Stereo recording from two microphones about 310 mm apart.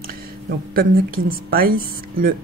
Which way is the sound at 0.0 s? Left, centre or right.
Right.